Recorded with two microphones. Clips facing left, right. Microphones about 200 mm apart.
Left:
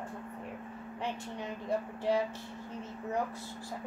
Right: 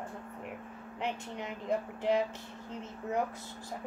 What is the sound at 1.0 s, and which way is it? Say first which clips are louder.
Speech: right 1 dB; 20° right (ahead or behind).